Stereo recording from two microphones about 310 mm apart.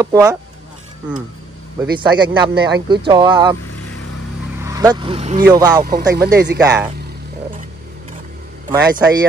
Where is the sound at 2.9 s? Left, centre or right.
Centre.